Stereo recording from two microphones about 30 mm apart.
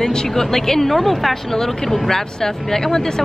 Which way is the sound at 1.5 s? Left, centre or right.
Centre.